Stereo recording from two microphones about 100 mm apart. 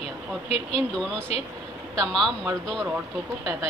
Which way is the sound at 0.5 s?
85° left.